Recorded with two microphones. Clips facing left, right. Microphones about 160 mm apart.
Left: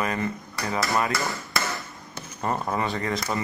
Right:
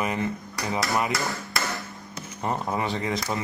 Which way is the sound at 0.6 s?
Centre (ahead or behind).